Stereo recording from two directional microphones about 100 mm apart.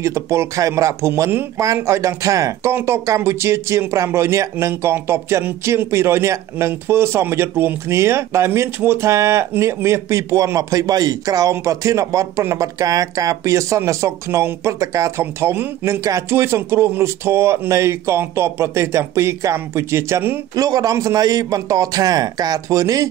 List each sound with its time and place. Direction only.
0.0 s a man's voice: 30° right (ahead or behind)
20.5 s a man's voice: 35° right (ahead or behind)